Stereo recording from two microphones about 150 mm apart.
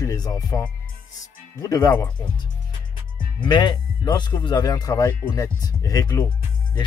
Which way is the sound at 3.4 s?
30° left (ahead or behind).